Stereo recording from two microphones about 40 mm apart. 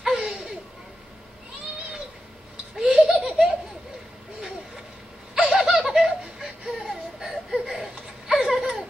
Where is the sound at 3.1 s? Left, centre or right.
Centre.